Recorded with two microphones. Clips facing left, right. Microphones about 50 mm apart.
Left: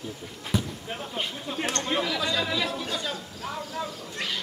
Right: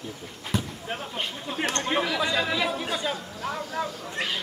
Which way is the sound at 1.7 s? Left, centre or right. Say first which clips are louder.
Right 1 dB; centre.